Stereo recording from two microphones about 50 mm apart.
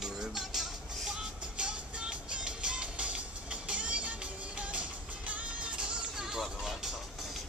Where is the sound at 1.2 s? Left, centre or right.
Centre.